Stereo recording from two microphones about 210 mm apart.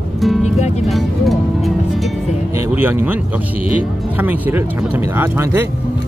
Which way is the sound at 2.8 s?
10° right (ahead or behind).